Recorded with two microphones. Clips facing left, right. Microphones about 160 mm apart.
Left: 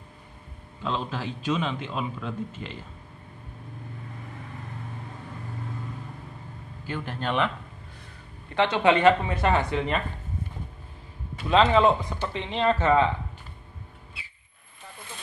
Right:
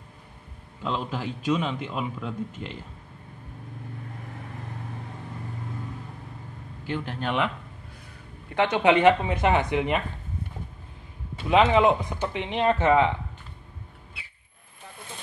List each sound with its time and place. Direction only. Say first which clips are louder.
0.8 s a man's voice: right 1 dB; 15° right (ahead or behind)
7.2 s a man's voice: left 1 dB; 10° right (ahead or behind)
8.5 s a man's voice: right 1 dB; 15° right (ahead or behind)
11.4 s a man's voice: even; 15° right (ahead or behind)